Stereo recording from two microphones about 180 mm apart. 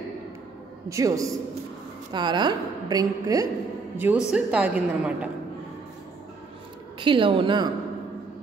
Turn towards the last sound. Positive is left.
turn(degrees=-25)  # may be behind; listen again after turning